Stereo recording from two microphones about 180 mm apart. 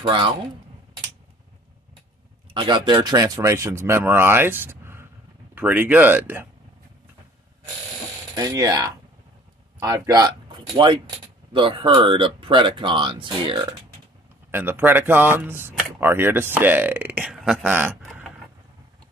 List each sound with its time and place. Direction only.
0.0 s speech: 25° right (ahead or behind)
2.5 s speech: 25° right (ahead or behind); by 6.4 s 10° right (ahead or behind)
8.4 s speech: 20° right (ahead or behind)
14.5 s speech: 10° right (ahead or behind)
17.7 s a sound: 10° right (ahead or behind)